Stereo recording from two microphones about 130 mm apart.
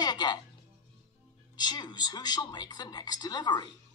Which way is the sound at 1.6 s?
35° left (ahead or behind).